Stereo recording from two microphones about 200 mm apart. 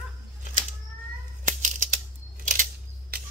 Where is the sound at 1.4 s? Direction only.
40° right (ahead or behind).